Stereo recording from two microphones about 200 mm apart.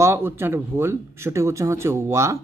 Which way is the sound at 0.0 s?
10° right (ahead or behind).